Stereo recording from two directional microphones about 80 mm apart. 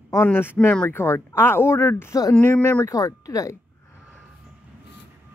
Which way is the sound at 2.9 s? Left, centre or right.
Left.